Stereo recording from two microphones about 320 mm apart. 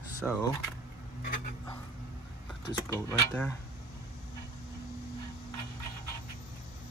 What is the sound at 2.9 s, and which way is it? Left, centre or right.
Speech, centre.